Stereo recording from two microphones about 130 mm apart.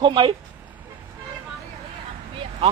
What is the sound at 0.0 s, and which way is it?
Speech, 40° right (ahead or behind).